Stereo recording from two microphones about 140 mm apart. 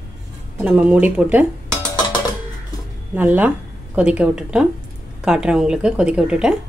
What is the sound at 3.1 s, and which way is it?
Speech, 10° right (ahead or behind).